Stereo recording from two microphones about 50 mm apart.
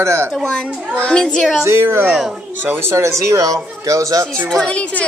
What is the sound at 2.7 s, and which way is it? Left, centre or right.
Speech, right.